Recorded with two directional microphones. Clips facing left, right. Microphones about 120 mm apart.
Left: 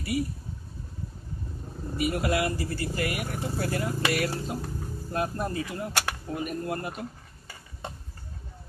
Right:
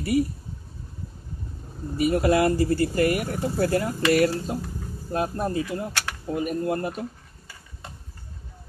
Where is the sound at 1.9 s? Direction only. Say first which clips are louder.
Right 6 dB; 35° right (ahead or behind).